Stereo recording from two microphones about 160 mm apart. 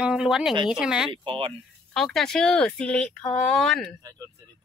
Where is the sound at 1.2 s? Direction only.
35° right (ahead or behind).